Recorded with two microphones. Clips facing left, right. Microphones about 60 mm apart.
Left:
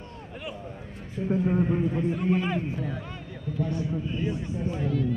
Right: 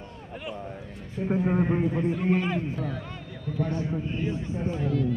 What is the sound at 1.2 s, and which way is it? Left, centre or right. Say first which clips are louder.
Speech: even; right.